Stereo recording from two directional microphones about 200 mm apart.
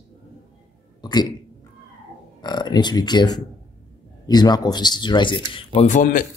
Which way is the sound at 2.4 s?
20° left (ahead or behind).